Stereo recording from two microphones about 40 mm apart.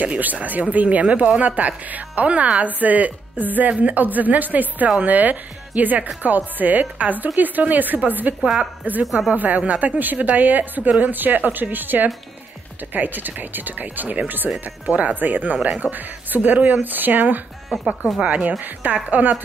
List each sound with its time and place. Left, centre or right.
0.0 s a woman's voice: right
9.0 s speech: centre
9.3 s a woman's voice: right
14.9 s speech: right
15.1 s a woman's voice: right
17.8 s speech: centre
18.2 s a woman's voice: right